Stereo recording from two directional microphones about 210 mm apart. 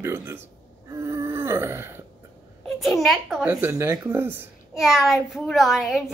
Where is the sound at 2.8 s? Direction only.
Centre (ahead or behind).